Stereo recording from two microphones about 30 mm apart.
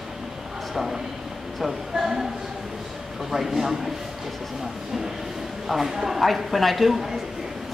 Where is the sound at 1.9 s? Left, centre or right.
Centre.